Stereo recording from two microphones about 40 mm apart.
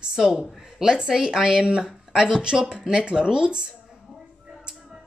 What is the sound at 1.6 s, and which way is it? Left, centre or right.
Speech, right.